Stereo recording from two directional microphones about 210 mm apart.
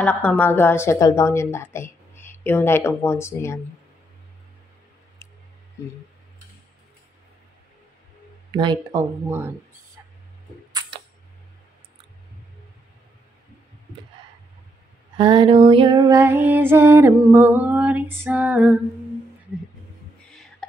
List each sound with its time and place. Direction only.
0.0 s a woman's voice: 5° left (ahead or behind)
8.5 s speech: 20° right (ahead or behind)
10.7 s a sound: 20° right (ahead or behind)
15.1 s female singing: 25° right (ahead or behind); by 18.8 s 5° right (ahead or behind)
20.2 s whispering: 5° left (ahead or behind)